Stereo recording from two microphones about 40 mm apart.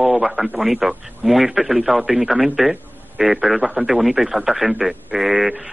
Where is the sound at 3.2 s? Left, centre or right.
Right.